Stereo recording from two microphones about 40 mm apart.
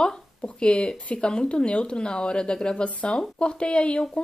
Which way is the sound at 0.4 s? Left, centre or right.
Left.